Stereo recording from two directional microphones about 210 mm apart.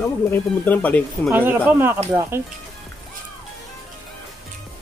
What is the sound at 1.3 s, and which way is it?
Speech, 10° right (ahead or behind).